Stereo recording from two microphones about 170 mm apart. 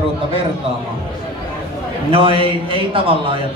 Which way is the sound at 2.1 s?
30° right (ahead or behind).